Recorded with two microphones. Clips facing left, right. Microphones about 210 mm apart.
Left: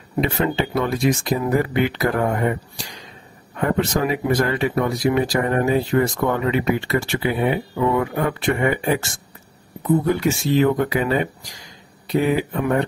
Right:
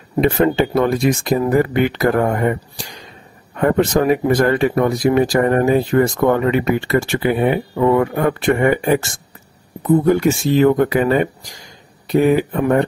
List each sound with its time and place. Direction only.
0.2 s speech: 50° right (ahead or behind)
3.5 s speech: 50° right (ahead or behind)